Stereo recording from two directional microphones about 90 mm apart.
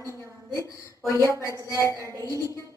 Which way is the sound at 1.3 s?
35° left (ahead or behind).